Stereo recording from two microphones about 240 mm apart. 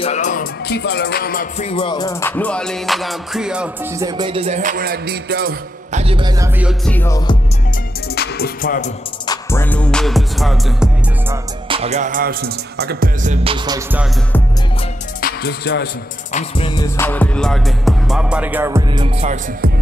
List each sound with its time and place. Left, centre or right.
0.0 s music: left; by 4.1 s centre
4.2 s music: right
6.0 s music: centre
6.7 s music: centre
8.1 s music: left
9.2 s music: centre
11.7 s music: right
15.2 s music: left
16.3 s music: left; by 19.3 s right